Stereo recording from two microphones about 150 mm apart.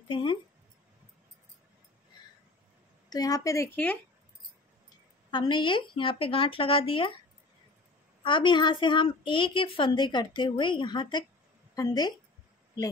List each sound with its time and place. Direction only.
0.1 s a sound: 35° left (ahead or behind)
3.1 s a woman's voice: 25° left (ahead or behind)
3.7 s speech: 10° left (ahead or behind)
5.3 s a woman's voice: 30° left (ahead or behind)
8.2 s a woman's voice: 35° left (ahead or behind)